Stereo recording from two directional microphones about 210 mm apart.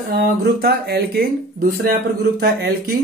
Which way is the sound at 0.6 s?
50° right (ahead or behind).